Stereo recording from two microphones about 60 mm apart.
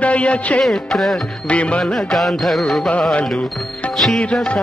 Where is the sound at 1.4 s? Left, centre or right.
Centre.